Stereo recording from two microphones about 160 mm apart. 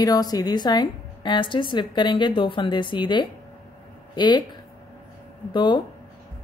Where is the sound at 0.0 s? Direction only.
25° left (ahead or behind).